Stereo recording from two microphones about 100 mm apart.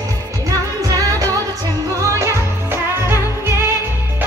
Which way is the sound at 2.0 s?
30° right (ahead or behind).